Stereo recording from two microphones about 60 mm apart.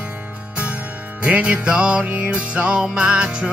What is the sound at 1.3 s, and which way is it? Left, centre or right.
Music, centre.